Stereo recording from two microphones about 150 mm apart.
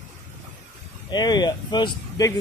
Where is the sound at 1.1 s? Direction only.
30° left (ahead or behind).